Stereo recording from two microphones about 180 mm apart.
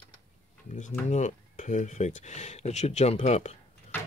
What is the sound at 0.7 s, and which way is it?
Speech, 40° left (ahead or behind).